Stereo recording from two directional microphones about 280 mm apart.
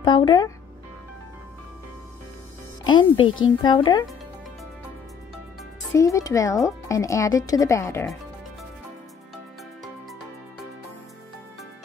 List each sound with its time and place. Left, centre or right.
0.0 s speech: centre
2.8 s speech: centre
5.9 s speech: centre